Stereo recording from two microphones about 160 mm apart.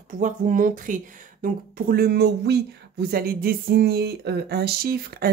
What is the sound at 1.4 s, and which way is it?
Speech, 70° right (ahead or behind).